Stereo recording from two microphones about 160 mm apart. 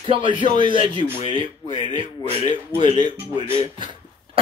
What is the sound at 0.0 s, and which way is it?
Speech, 35° right (ahead or behind).